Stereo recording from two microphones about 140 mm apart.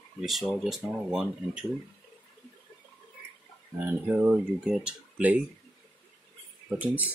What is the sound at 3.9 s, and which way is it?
Speech, 10° right (ahead or behind).